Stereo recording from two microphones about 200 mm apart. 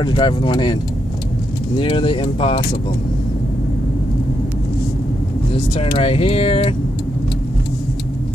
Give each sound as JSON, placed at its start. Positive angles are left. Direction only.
{"t": 0.0, "sound": "speech", "side_deg": 25}
{"t": 1.8, "sound": "speech", "side_deg": 25}
{"t": 5.5, "sound": "speech", "side_deg": 30}